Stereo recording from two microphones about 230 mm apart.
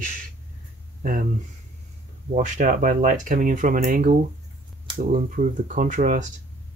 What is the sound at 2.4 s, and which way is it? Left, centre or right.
Speech, right.